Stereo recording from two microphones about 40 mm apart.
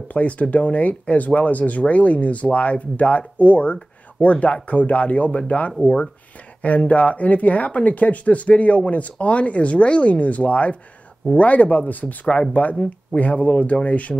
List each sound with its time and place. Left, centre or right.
0.1 s speech: left